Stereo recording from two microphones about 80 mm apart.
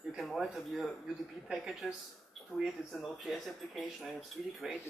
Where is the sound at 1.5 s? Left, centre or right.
Centre.